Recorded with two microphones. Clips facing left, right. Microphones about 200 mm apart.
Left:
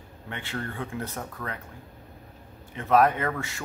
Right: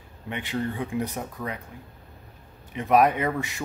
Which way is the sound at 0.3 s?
15° right (ahead or behind).